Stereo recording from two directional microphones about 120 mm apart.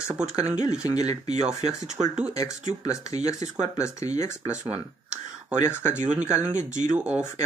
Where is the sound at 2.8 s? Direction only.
30° left (ahead or behind).